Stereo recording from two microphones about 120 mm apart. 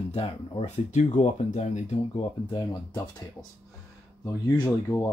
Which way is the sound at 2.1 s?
45° left (ahead or behind).